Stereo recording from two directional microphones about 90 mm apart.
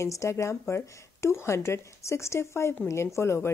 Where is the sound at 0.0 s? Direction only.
35° left (ahead or behind).